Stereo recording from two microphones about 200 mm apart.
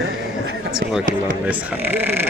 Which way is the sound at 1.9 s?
10° right (ahead or behind).